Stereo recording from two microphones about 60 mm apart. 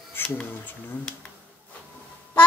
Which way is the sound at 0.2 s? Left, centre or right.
Left.